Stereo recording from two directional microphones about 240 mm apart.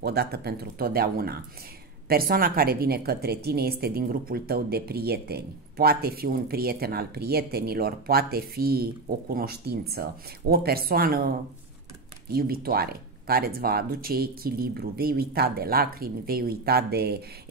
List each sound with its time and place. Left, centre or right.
0.0 s speech: right